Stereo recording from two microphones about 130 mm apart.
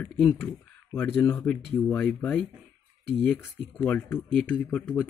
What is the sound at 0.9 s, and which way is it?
Speech, 15° left (ahead or behind).